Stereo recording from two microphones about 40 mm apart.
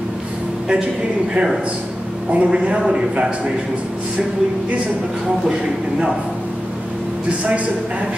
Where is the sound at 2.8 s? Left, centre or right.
Centre.